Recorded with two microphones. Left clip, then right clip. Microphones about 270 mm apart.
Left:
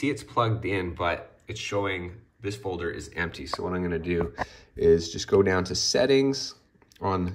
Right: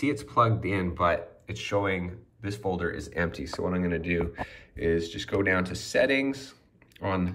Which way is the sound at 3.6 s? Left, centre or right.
Centre.